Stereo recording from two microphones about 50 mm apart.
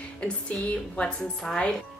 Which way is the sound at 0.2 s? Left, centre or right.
Left.